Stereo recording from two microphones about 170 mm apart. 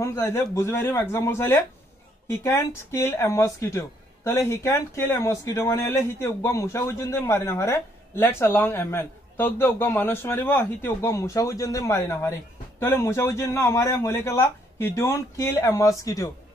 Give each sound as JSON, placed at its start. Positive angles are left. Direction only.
{"t": 0.0, "sound": "speech", "side_deg": 15}